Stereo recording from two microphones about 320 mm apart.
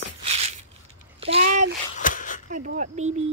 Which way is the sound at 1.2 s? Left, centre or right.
Right.